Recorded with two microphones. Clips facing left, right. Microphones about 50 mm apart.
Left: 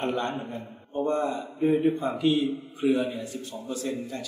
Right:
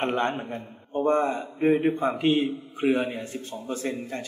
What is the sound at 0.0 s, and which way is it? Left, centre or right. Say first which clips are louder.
A man's voice: right 3 dB; right.